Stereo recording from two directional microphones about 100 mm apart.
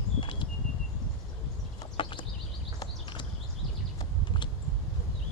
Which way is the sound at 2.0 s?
55° left (ahead or behind).